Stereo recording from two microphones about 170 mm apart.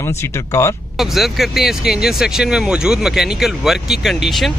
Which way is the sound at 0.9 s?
Centre (ahead or behind).